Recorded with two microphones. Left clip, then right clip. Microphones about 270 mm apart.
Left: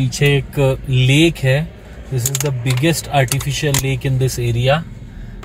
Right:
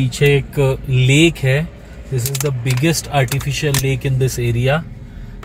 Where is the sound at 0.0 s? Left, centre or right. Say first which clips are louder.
Right 2 dB; centre.